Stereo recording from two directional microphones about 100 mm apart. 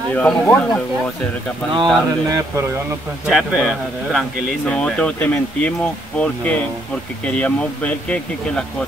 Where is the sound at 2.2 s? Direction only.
35° right (ahead or behind).